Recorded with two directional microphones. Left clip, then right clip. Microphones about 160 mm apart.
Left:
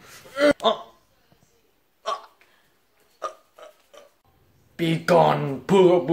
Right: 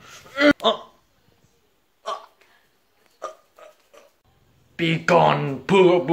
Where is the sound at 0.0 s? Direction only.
10° left (ahead or behind).